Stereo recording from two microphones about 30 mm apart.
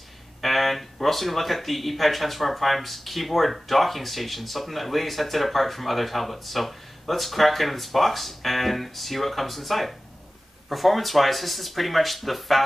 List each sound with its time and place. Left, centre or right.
0.4 s speech: centre